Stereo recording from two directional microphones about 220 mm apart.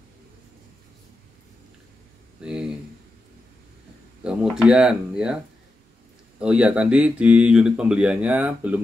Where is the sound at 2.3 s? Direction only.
5° right (ahead or behind).